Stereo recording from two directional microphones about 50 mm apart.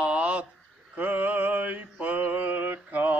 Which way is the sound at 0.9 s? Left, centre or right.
Right.